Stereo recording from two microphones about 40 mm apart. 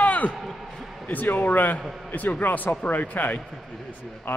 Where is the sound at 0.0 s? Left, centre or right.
Left.